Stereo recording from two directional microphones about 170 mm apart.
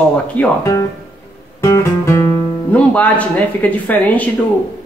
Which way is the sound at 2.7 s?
10° left (ahead or behind).